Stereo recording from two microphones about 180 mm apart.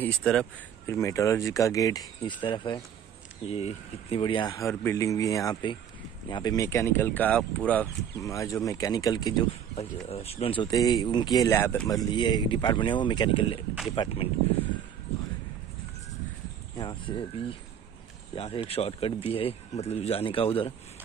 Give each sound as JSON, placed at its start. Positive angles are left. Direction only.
{"t": 0.0, "sound": "speech", "side_deg": 5}
{"t": 0.8, "sound": "speech", "side_deg": 15}
{"t": 8.1, "sound": "speech", "side_deg": 15}
{"t": 9.8, "sound": "speech", "side_deg": 35}
{"t": 16.7, "sound": "speech", "side_deg": 25}